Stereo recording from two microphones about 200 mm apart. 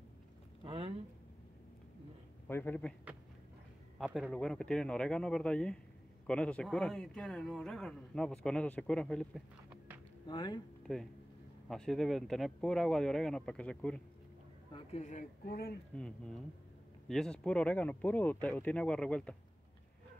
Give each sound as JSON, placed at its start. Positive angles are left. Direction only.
{"t": 0.7, "sound": "a sound", "side_deg": -25}
{"t": 2.4, "sound": "a man's voice", "side_deg": 10}
{"t": 4.0, "sound": "speech", "side_deg": 0}
{"t": 10.2, "sound": "speech", "side_deg": 20}
{"t": 10.8, "sound": "a sound", "side_deg": 5}
{"t": 11.7, "sound": "speech", "side_deg": 0}
{"t": 14.7, "sound": "speech", "side_deg": 30}
{"t": 17.1, "sound": "speech", "side_deg": 5}